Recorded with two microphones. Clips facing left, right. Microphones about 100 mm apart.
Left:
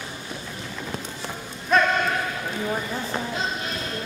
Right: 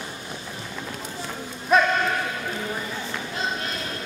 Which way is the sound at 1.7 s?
5° right (ahead or behind).